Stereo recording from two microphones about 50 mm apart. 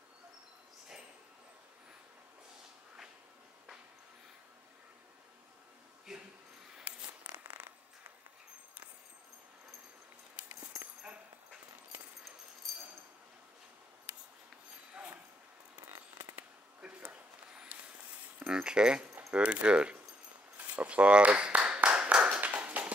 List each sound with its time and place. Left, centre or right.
6.1 s a sound: centre
10.5 s dog: right
16.8 s a sound: right
18.5 s speech: centre
20.5 s clapping: right
22.1 s tap: right